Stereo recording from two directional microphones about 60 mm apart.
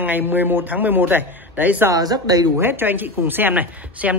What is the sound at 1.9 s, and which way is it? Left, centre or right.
Speech, right.